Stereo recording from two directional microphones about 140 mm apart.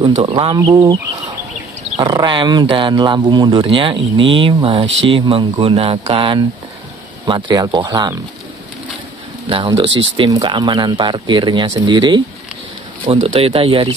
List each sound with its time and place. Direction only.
0.3 s speech: 35° right (ahead or behind)
2.0 s speech: 30° right (ahead or behind)
9.5 s speech: 40° right (ahead or behind)
13.0 s speech: 45° right (ahead or behind)